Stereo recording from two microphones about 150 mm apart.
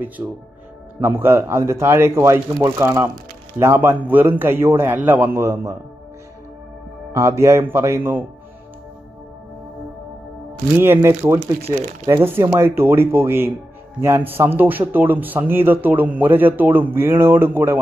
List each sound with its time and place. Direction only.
0.2 s speech: 20° right (ahead or behind)
7.1 s speech: 20° right (ahead or behind)
10.8 s speech: 15° right (ahead or behind)
12.4 s speech: 15° right (ahead or behind)